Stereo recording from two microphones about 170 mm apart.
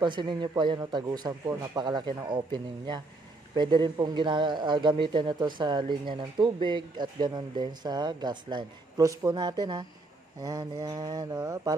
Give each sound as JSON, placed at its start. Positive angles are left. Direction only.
{"t": 0.0, "sound": "speech", "side_deg": -25}